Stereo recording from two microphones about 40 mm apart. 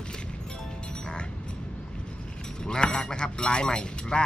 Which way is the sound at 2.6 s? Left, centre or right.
Left.